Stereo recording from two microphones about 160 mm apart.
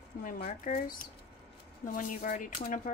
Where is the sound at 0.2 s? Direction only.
60° left (ahead or behind).